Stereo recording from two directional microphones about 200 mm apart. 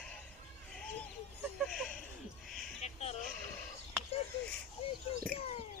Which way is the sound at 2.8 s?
35° left (ahead or behind).